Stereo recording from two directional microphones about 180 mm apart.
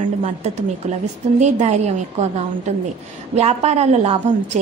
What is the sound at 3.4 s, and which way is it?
A woman's voice, 35° right (ahead or behind).